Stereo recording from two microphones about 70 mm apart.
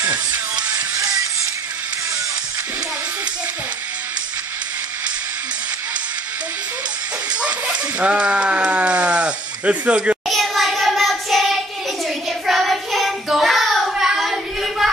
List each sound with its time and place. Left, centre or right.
0.0 s music: centre
0.7 s music: right
7.2 s speech: centre
10.2 s child singing: centre